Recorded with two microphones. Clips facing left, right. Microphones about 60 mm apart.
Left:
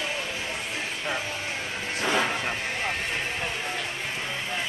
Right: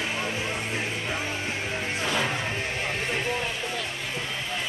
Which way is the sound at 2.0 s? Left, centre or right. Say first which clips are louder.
Left 3 dB; left.